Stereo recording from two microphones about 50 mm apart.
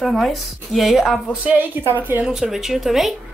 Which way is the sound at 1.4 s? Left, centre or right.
Right.